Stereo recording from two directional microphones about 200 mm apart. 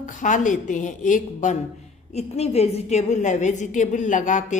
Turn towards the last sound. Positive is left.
turn(degrees=40)  # may be behind; listen again after turning